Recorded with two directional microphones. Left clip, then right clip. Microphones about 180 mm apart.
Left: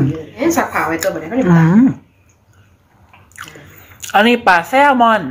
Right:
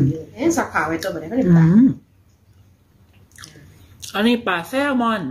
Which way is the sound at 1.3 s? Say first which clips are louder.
Left 3 dB; 25° right (ahead or behind).